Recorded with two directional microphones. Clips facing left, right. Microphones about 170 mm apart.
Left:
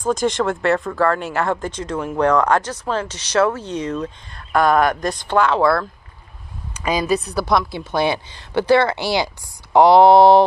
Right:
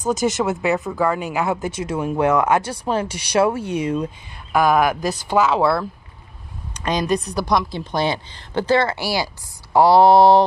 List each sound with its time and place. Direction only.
0.1 s speech: 5° right (ahead or behind)
6.7 s a woman's voice: 5° left (ahead or behind)
8.6 s speech: 20° left (ahead or behind)